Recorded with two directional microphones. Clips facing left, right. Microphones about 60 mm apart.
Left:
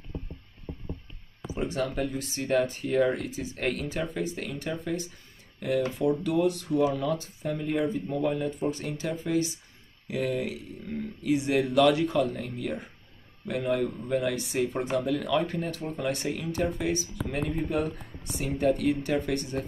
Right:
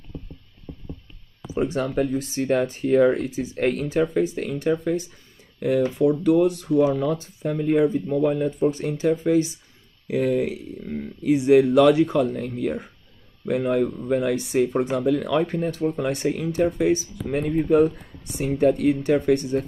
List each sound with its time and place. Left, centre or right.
1.6 s speech: right